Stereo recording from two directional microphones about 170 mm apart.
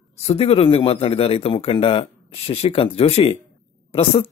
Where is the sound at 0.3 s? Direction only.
35° left (ahead or behind).